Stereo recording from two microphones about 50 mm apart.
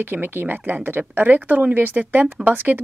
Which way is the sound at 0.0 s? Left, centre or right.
Right.